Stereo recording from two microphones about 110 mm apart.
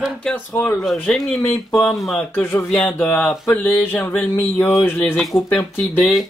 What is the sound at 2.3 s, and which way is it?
Speech, 20° left (ahead or behind).